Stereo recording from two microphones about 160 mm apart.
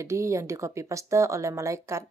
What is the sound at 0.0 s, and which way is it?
Speech, 20° right (ahead or behind).